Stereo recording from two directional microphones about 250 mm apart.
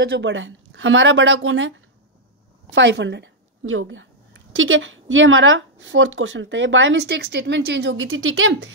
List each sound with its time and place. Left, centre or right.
0.0 s a woman's voice: right
2.7 s a woman's voice: right